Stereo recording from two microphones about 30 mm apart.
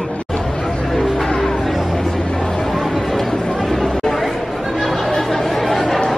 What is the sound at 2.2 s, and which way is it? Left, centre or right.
Music, left.